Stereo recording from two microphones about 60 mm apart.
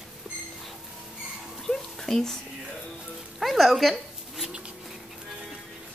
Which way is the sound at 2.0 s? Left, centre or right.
Centre.